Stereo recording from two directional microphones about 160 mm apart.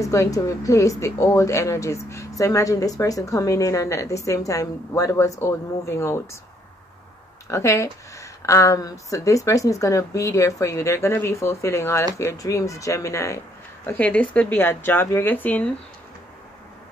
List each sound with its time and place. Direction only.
0.0 s a woman's voice: 20° left (ahead or behind)
7.4 s a woman's voice: 20° left (ahead or behind)